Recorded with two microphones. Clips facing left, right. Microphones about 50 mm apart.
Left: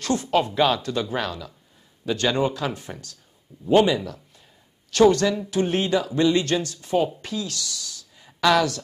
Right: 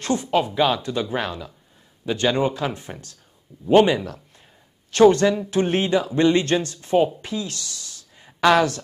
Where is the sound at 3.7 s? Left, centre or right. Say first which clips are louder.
Right 2 dB; right.